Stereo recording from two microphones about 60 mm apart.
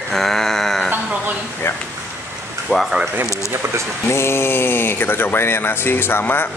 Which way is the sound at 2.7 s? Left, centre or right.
Centre.